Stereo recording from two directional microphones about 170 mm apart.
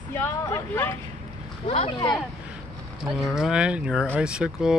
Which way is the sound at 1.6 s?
35° left (ahead or behind).